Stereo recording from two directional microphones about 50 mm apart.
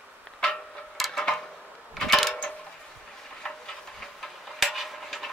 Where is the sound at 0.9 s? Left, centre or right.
Centre.